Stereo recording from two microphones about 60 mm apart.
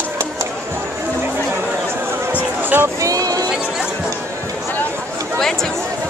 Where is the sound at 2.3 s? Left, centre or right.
Right.